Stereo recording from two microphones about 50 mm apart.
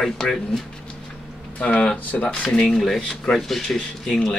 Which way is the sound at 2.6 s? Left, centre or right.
Centre.